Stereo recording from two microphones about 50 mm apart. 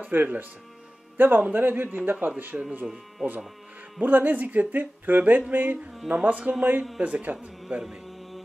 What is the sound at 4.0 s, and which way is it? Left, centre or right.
A man's voice, right.